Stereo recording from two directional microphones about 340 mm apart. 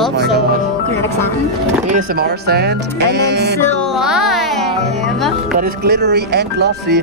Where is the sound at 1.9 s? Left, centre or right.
Right.